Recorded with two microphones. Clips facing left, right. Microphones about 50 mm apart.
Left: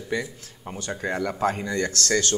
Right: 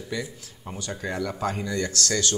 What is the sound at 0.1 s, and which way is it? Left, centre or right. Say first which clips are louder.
A man's voice: left 4 dB; left.